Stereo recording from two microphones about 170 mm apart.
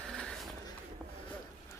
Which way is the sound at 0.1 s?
5° left (ahead or behind).